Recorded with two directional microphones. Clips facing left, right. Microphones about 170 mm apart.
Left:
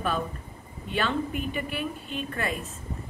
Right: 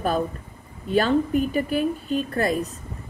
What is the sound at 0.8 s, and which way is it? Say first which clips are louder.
Speech: right 8 dB; 40° right (ahead or behind).